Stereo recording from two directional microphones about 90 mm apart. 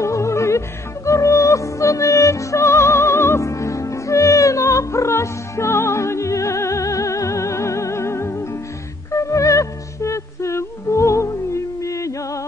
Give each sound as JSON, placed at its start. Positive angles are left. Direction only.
{"t": 0.0, "sound": "music", "side_deg": 30}